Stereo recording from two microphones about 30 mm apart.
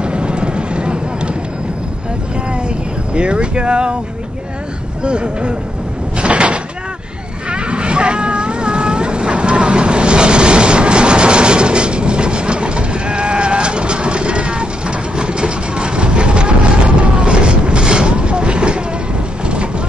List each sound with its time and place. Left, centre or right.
0.0 s vehicle: right
3.2 s speech: right
5.0 s speech: right
6.1 s door: right
7.5 s vehicle: right